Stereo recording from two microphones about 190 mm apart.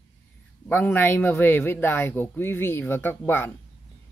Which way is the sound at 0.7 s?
10° left (ahead or behind).